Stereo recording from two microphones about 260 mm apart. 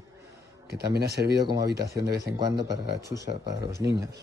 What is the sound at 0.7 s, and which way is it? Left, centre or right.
Speech, right.